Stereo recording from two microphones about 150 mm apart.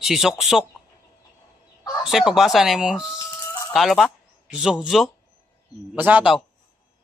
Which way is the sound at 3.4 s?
20° left (ahead or behind).